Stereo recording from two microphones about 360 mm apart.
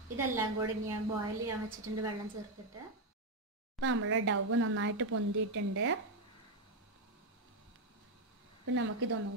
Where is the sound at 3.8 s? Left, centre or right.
Right.